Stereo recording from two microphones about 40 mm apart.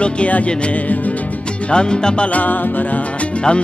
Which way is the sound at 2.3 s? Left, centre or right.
Left.